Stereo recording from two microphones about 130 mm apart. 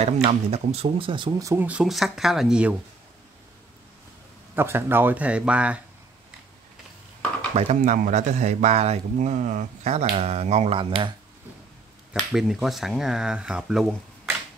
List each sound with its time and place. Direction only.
0.0 s speech: 55° right (ahead or behind)
1.4 s speech: 15° right (ahead or behind)
4.6 s speech: 20° right (ahead or behind)
7.5 s speech: 70° right (ahead or behind); by 11.1 s 40° right (ahead or behind)
12.2 s speech: centre (ahead or behind)